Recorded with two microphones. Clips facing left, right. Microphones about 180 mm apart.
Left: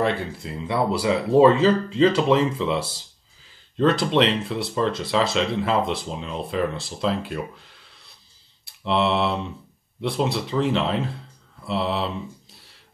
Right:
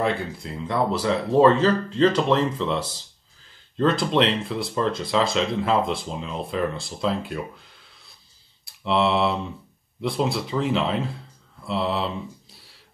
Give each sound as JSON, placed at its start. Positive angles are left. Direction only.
{"t": 0.0, "sound": "speech", "side_deg": 0}